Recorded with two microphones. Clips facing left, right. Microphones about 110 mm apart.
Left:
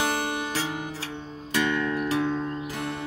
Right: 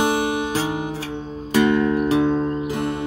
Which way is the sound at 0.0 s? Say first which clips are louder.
Right 7 dB; 15° right (ahead or behind).